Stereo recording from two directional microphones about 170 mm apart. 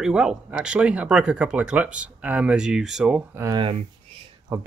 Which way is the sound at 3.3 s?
15° right (ahead or behind).